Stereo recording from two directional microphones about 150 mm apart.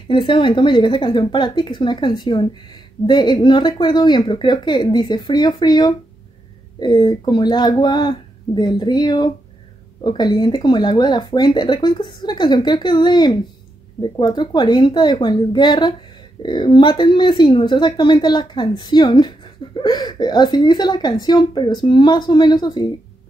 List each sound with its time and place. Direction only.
0.1 s a woman's voice: 35° left (ahead or behind)